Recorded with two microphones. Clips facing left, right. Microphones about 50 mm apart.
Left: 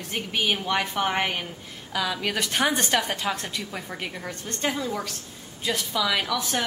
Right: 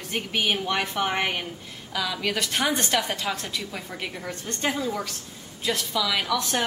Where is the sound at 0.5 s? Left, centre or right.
Centre.